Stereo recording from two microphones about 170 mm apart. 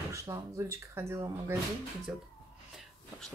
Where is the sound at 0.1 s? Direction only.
15° right (ahead or behind).